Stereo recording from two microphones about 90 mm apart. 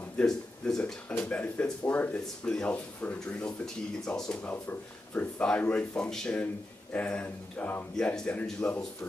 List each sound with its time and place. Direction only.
0.2 s speech: 5° left (ahead or behind)
1.1 s speech: 15° left (ahead or behind)
7.9 s speech: 10° left (ahead or behind)